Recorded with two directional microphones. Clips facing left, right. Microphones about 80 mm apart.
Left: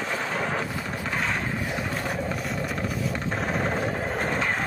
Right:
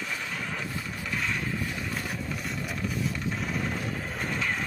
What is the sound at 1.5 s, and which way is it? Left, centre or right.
Vehicle, left.